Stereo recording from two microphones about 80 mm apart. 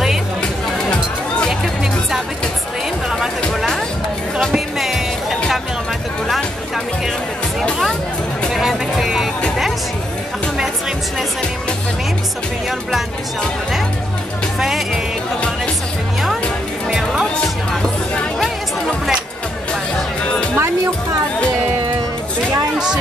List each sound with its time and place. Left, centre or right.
4.4 s music: centre
8.5 s music: centre
16.9 s music: centre
17.4 s music: centre
20.5 s music: right